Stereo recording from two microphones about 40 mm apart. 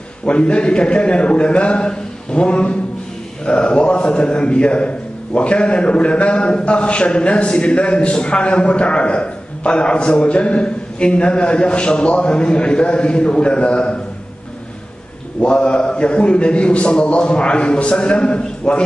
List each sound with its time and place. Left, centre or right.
0.2 s a man's voice: left
15.5 s a man's voice: left